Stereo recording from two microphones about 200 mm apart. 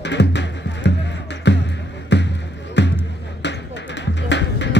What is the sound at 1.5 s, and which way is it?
Basketball bounce, 60° left (ahead or behind).